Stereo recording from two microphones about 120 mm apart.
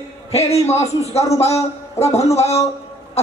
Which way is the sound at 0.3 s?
60° left (ahead or behind).